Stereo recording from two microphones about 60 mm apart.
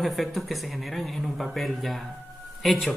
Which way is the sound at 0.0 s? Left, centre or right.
Centre.